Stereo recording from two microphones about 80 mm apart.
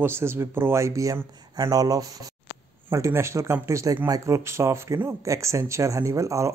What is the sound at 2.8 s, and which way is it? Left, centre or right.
Speech, right.